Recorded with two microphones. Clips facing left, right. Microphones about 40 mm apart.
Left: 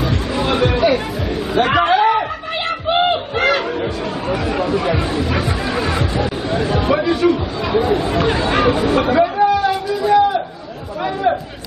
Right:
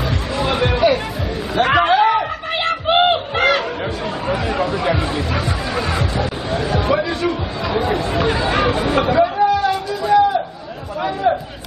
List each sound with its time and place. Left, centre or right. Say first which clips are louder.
0.0 s music: left 2 dB; centre
1.8 s a sound: even; centre
2.9 s a sound: right 1 dB; right
3.3 s music: left 1 dB; centre
4.3 s chatter: left 1 dB; centre
5.3 s music: left 2 dB; centre
8.1 s chatter: left 1 dB; centre